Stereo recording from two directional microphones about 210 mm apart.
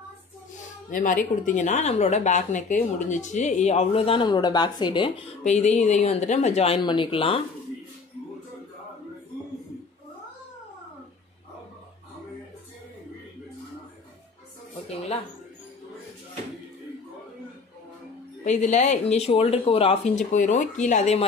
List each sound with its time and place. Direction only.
0.8 s speech: 40° left (ahead or behind)
18.4 s speech: 35° left (ahead or behind)